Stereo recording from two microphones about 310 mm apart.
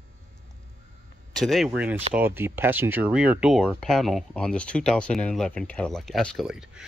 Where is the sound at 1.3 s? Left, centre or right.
Centre.